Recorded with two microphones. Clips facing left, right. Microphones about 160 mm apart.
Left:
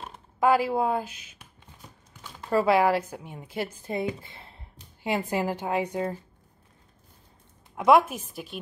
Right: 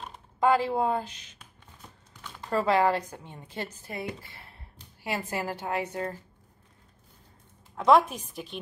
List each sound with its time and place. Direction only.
0.0 s speech: 5° left (ahead or behind)
2.5 s a woman's voice: 10° left (ahead or behind)
3.8 s a woman's voice: 20° left (ahead or behind)
7.7 s a woman's voice: 10° left (ahead or behind)